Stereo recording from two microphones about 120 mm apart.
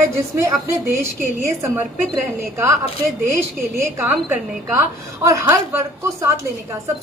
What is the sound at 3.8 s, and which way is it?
A woman's voice, 20° right (ahead or behind).